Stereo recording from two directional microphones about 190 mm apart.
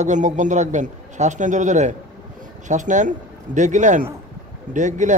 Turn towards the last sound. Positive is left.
turn(degrees=-40)  # may be behind; listen again after turning